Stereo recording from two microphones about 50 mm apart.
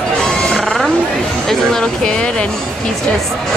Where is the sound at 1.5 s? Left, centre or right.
Centre.